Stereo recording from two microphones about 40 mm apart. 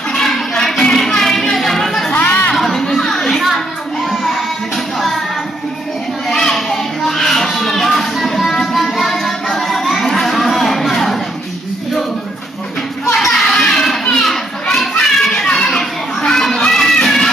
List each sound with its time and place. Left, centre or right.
0.1 s a sound: centre
2.1 s chatter: left
2.5 s chatter: centre
3.0 s a sound: centre
6.2 s music: centre
13.1 s children playing: centre